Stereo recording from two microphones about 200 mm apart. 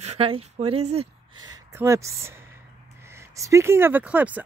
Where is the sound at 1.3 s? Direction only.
15° right (ahead or behind).